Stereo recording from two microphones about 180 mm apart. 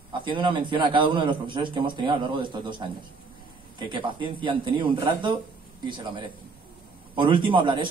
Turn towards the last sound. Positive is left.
turn(degrees=-25)  # may be behind; listen again after turning